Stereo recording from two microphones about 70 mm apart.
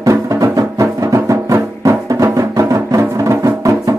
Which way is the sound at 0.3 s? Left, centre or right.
Right.